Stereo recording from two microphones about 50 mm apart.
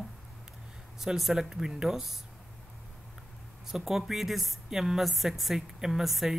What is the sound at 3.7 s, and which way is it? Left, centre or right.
A woman's voice, centre.